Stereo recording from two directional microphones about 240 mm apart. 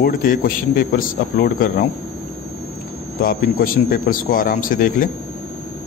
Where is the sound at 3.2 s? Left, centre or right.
Left.